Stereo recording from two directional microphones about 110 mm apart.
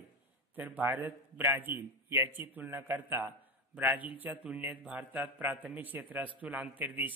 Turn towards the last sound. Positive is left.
turn(degrees=-15)  # may be behind; listen again after turning